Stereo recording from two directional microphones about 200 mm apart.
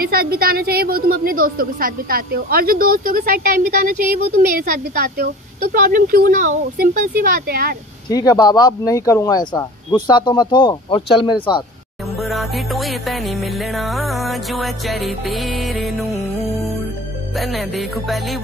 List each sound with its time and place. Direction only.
0.0 s a woman's voice: 50° right (ahead or behind)
8.1 s speech: 20° left (ahead or behind)
12.2 s music: centre (ahead or behind)